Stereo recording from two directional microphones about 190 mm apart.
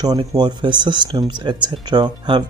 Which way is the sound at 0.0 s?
20° right (ahead or behind).